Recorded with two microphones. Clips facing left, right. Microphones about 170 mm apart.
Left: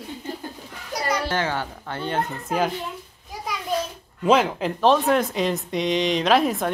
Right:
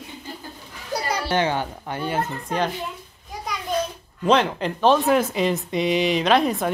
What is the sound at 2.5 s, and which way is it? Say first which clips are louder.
Speech: left 1 dB; 5° left (ahead or behind).